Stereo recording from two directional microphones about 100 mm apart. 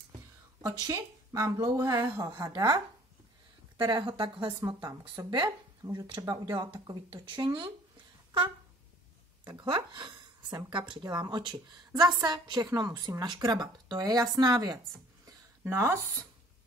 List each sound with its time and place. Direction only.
0.6 s speech: 35° right (ahead or behind)
3.7 s a woman's voice: 55° right (ahead or behind)
9.4 s a woman's voice: 50° right (ahead or behind)
15.6 s speech: 25° right (ahead or behind)